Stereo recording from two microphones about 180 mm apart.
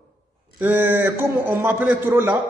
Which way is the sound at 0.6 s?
10° right (ahead or behind).